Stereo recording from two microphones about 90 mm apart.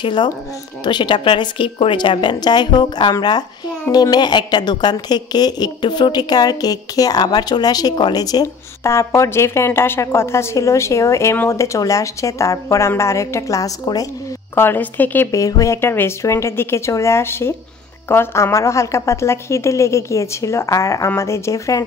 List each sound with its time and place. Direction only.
0.0 s a woman's voice: 60° left (ahead or behind)
8.8 s a woman's voice: 30° left (ahead or behind)
14.5 s a woman's voice: 25° left (ahead or behind)
15.3 s a woman's voice: 40° left (ahead or behind)